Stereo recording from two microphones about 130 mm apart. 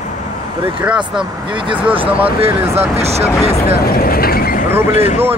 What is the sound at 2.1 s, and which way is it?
Speech, 45° right (ahead or behind).